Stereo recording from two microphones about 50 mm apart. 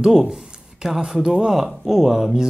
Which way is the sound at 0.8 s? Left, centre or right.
Centre.